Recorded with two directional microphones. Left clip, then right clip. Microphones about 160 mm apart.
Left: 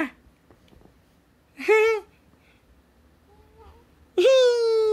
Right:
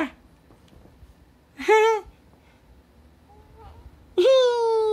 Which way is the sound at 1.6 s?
15° left (ahead or behind).